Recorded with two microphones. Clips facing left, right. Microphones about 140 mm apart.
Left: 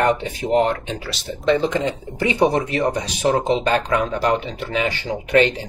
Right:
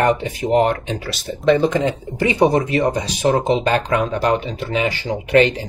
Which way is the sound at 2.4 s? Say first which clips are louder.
Right 3 dB; centre (ahead or behind).